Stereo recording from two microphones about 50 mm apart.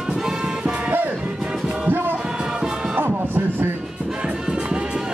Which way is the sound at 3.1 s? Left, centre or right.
Right.